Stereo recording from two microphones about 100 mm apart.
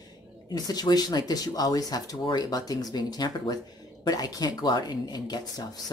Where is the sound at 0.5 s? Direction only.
40° left (ahead or behind).